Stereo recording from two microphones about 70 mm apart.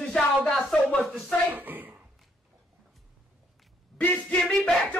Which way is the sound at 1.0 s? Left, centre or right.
Centre.